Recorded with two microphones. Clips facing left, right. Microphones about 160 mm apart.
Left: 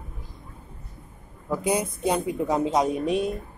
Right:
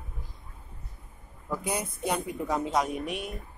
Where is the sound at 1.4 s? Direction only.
15° left (ahead or behind).